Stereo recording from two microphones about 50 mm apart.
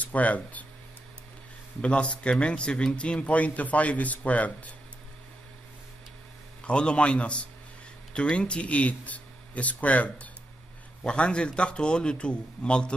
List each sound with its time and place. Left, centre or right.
0.0 s speech: left
1.8 s speech: left
6.6 s speech: left